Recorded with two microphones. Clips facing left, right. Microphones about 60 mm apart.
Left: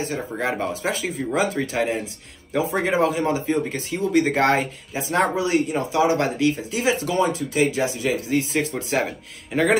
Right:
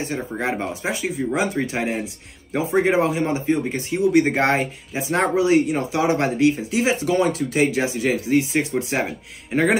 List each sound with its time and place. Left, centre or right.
0.1 s speech: centre